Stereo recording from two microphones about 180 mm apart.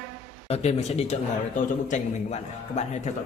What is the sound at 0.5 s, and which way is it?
A man's voice, 35° left (ahead or behind).